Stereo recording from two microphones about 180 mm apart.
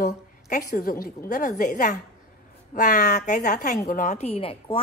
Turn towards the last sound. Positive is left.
turn(degrees=30)  # may be behind; listen again after turning